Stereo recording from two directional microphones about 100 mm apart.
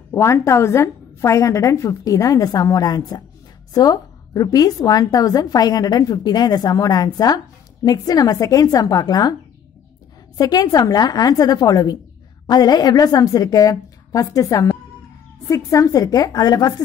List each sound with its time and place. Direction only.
0.1 s a woman's voice: 30° left (ahead or behind)
10.3 s a woman's voice: 40° left (ahead or behind)